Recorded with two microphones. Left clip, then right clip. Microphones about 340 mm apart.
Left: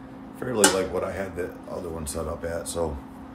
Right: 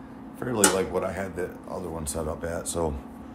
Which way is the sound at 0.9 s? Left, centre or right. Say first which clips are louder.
Even; centre.